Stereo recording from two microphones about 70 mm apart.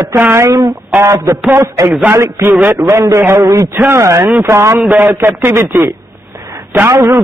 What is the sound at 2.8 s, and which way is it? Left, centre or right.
Speech, right.